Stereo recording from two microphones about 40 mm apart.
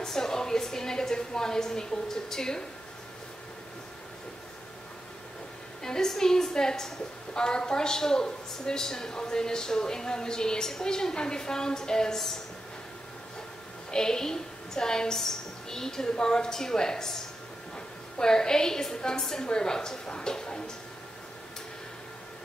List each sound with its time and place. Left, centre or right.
0.0 s a woman's voice: centre
5.8 s a woman's voice: centre
13.9 s a woman's voice: centre